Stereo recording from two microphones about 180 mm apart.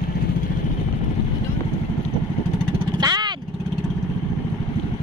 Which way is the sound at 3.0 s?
25° right (ahead or behind).